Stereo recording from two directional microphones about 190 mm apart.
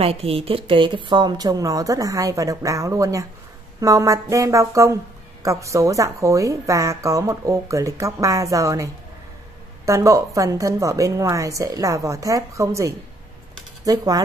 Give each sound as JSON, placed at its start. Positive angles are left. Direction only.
{"t": 0.0, "sound": "a woman's voice", "side_deg": -30}